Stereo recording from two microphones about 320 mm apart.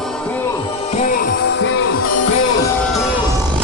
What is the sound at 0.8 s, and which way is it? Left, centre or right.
Music, left.